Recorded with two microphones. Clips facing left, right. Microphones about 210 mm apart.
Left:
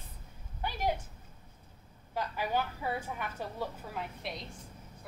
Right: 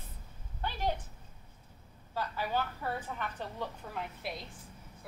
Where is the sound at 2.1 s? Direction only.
15° left (ahead or behind).